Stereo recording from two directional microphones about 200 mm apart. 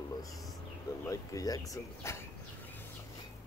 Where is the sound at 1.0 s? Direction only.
15° left (ahead or behind).